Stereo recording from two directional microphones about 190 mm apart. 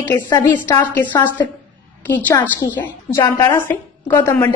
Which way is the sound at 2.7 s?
15° left (ahead or behind).